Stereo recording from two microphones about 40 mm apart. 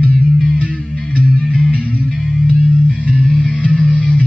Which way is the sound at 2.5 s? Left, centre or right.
Centre.